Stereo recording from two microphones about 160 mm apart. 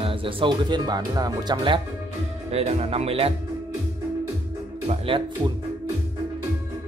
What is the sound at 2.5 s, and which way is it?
Speech, 40° right (ahead or behind).